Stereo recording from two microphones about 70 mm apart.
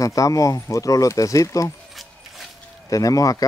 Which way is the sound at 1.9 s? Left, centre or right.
Centre.